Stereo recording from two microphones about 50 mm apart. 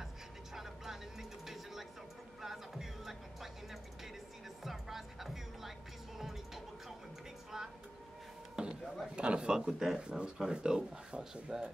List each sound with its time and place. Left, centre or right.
1.4 s television: centre
2.4 s music: centre
4.6 s music: centre
7.5 s a sound: centre
9.0 s speech: right